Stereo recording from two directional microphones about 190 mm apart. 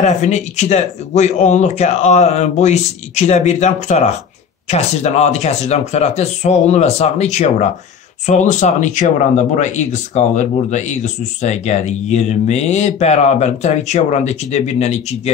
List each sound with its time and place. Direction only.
0.0 s speech: 35° left (ahead or behind)